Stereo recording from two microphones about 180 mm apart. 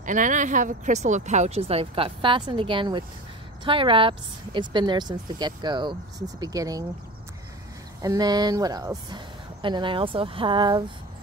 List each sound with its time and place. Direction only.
0.0 s speech: 45° right (ahead or behind); by 6.9 s 20° right (ahead or behind)
8.0 s speech: 20° right (ahead or behind)